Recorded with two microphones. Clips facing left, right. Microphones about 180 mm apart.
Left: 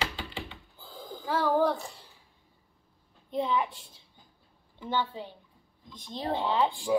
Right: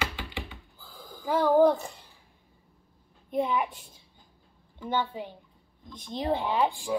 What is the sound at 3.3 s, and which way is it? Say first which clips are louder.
Speech: right 1 dB; 15° right (ahead or behind).